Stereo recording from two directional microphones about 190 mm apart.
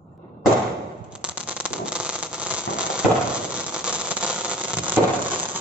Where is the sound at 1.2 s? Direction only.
5° right (ahead or behind).